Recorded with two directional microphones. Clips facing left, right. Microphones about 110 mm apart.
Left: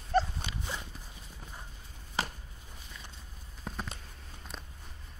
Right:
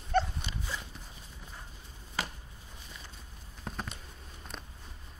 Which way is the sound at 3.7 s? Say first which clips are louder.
Even; centre (ahead or behind).